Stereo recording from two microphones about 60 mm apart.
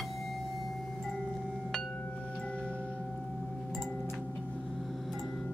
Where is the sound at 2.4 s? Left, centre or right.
Centre.